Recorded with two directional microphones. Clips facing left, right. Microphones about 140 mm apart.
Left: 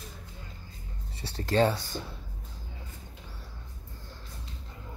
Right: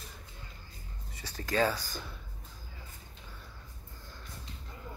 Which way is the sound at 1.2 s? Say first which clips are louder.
Left 4 dB; 30° left (ahead or behind).